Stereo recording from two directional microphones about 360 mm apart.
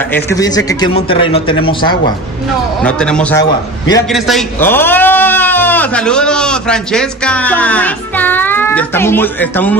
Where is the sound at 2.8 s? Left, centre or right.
Centre.